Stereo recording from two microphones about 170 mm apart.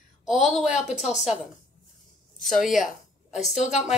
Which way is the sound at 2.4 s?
Centre (ahead or behind).